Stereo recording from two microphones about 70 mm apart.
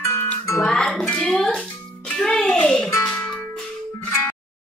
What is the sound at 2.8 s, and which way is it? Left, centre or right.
Music, left.